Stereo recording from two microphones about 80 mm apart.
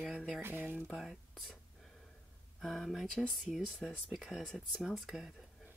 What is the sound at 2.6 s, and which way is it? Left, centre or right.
Speech, centre.